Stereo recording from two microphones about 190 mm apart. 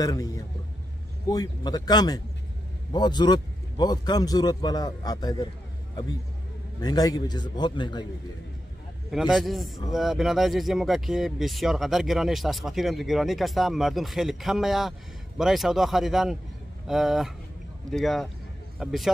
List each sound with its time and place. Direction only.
0.0 s a man's voice: 20° left (ahead or behind)
1.3 s a man's voice: 20° left (ahead or behind)
6.8 s a man's voice: 20° left (ahead or behind)
9.1 s speech: centre (ahead or behind)